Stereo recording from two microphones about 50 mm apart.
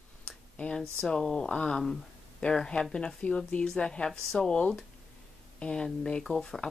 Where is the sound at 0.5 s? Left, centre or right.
Left.